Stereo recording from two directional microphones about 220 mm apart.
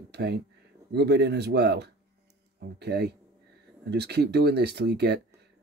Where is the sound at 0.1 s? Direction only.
50° right (ahead or behind).